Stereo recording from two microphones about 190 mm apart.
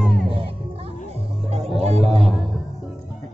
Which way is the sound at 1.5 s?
35° right (ahead or behind).